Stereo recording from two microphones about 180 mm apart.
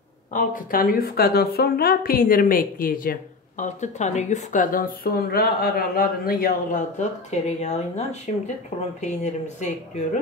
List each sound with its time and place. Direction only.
0.3 s a woman's voice: 50° left (ahead or behind)